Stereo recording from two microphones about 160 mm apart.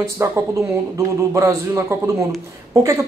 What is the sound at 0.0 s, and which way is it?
A man's voice, 15° right (ahead or behind).